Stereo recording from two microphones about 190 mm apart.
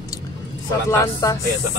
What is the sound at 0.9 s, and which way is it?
Speech, 20° left (ahead or behind).